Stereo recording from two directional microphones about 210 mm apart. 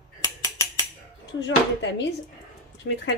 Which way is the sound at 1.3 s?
55° left (ahead or behind).